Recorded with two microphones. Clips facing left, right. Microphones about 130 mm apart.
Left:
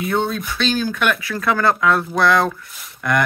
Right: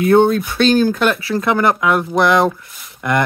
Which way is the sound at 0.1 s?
55° right (ahead or behind).